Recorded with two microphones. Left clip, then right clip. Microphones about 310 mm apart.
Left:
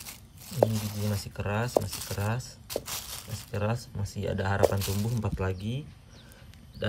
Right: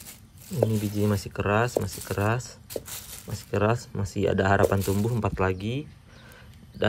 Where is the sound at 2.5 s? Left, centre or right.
Centre.